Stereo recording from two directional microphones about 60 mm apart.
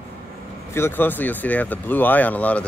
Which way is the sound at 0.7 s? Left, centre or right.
Left.